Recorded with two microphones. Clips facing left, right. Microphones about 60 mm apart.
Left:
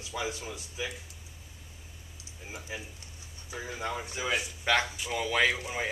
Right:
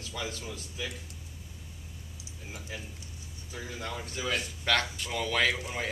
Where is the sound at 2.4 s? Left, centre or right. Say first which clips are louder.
Left 2 dB; centre.